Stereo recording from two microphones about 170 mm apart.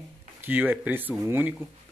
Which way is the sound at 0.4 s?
10° right (ahead or behind).